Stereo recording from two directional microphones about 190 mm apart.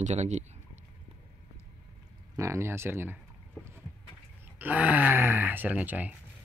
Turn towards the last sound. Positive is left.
turn(degrees=-10)  # may be behind; listen again after turning